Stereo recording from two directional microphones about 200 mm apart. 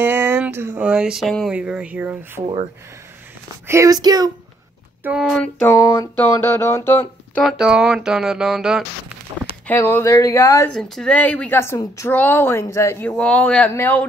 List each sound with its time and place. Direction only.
0.0 s speech: 10° right (ahead or behind)
3.6 s speech: 15° right (ahead or behind)
5.0 s speech: 5° right (ahead or behind)
7.4 s speech: 5° right (ahead or behind)
9.7 s speech: 10° left (ahead or behind)
10.7 s speech: 5° left (ahead or behind)